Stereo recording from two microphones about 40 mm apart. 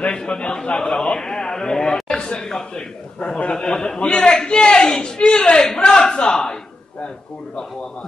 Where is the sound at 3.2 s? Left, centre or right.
Left.